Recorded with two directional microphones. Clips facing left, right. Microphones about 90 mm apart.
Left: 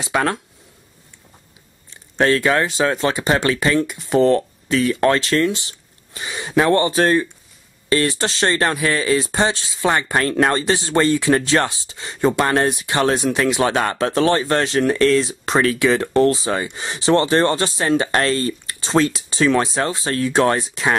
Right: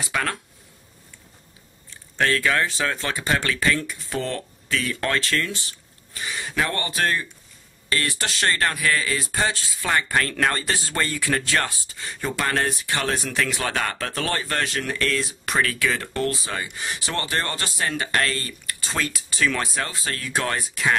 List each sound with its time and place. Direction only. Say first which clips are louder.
0.0 s speech: left 7 dB; 25° left (ahead or behind)
1.9 s speech: left 6 dB; 25° left (ahead or behind)